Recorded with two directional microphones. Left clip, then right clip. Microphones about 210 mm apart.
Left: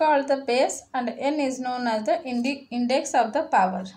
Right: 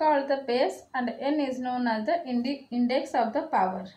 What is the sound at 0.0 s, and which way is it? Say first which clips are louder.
A woman's voice: left 3 dB; 50° left (ahead or behind).